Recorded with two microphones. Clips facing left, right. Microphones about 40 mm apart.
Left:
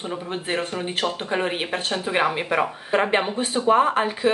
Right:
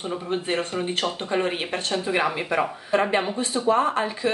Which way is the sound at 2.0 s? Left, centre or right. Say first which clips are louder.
Left 3 dB; left.